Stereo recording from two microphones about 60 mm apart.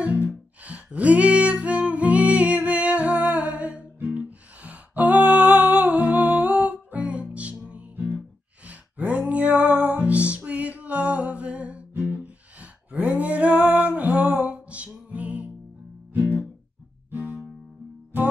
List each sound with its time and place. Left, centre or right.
0.0 s music: right
17.1 s guitar: right